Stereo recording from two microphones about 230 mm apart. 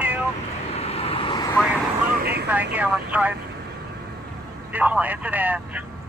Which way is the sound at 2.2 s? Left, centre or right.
Right.